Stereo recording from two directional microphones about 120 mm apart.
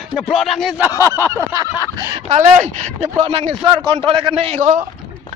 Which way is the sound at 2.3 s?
75° right (ahead or behind).